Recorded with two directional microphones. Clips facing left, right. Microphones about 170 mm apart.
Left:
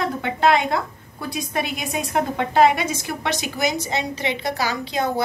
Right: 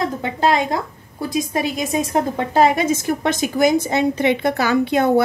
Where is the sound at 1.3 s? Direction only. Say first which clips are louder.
Right 5 dB; 40° right (ahead or behind).